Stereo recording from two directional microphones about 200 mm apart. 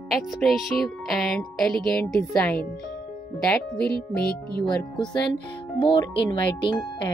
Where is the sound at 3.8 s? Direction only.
50° left (ahead or behind).